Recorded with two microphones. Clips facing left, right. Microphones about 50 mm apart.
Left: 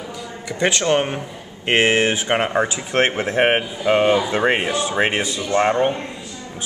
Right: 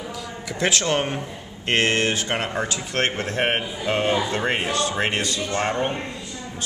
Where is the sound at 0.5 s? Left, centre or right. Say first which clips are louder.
Left 4 dB; centre.